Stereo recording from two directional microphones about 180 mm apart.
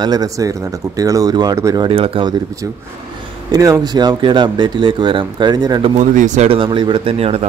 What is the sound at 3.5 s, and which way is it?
Speech, 20° right (ahead or behind).